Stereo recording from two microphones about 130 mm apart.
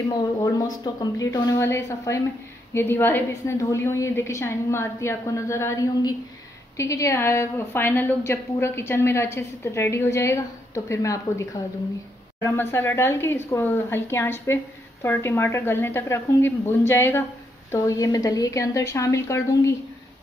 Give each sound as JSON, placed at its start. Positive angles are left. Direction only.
{"t": 0.4, "sound": "a woman's voice", "side_deg": 30}